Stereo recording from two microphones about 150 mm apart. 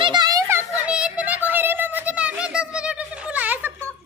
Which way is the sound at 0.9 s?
5° right (ahead or behind).